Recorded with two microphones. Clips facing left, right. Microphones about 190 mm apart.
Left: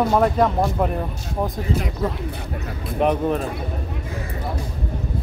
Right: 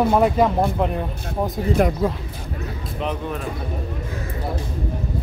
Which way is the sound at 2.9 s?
60° left (ahead or behind).